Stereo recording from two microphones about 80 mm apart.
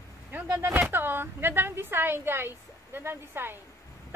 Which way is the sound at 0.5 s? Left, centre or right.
Right.